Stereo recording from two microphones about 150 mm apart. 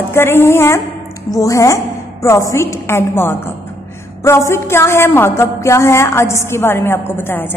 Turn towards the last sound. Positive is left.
turn(degrees=15)  # may be behind; listen again after turning